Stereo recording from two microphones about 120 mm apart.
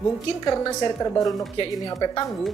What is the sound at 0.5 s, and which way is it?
A woman's voice, 25° left (ahead or behind).